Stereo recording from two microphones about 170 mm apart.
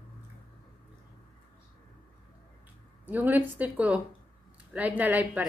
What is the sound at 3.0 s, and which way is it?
Speech, 10° right (ahead or behind).